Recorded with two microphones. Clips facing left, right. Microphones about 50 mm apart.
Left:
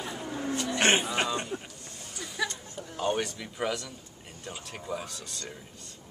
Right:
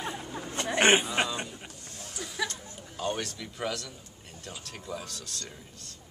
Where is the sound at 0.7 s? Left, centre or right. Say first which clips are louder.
Right 3 dB; centre.